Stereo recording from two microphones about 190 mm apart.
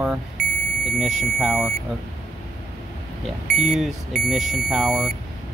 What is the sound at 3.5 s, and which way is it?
Speech, centre (ahead or behind).